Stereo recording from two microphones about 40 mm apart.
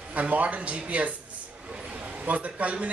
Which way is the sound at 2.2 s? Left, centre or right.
Right.